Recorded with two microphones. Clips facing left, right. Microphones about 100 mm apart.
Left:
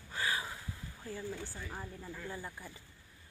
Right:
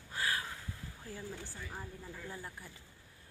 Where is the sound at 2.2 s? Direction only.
Centre (ahead or behind).